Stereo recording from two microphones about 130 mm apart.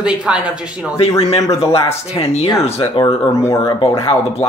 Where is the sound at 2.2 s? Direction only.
50° left (ahead or behind).